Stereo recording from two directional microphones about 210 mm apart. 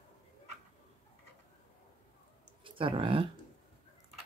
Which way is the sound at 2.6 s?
25° right (ahead or behind).